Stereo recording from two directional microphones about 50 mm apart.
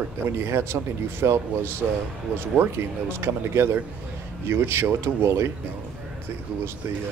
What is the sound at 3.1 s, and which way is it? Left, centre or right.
Speech, right.